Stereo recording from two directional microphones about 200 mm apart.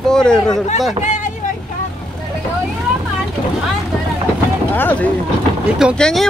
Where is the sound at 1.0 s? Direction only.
40° left (ahead or behind).